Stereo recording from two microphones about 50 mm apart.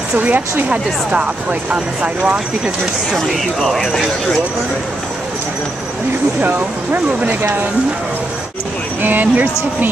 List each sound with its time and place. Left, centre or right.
0.2 s speech: right
3.1 s speech: centre
6.4 s speech: right
9.0 s speech: right